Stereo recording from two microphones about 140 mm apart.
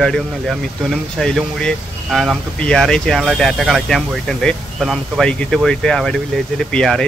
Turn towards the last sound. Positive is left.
turn(degrees=5)  # may be behind; listen again after turning